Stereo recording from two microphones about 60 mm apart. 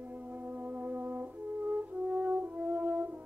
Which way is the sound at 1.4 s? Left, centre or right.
Right.